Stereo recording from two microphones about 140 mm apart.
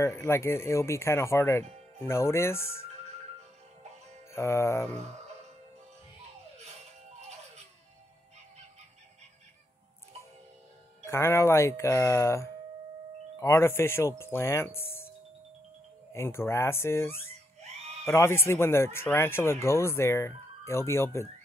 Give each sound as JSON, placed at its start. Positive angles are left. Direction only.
{"t": 0.0, "sound": "speech", "side_deg": 20}
{"t": 4.3, "sound": "speech", "side_deg": 20}
{"t": 11.1, "sound": "speech", "side_deg": 15}
{"t": 16.1, "sound": "speech", "side_deg": 20}